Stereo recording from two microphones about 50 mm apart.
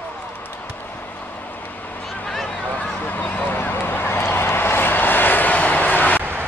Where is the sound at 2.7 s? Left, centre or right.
Left.